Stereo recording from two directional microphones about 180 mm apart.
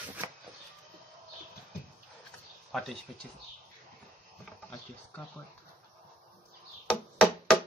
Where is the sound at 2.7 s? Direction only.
Centre (ahead or behind).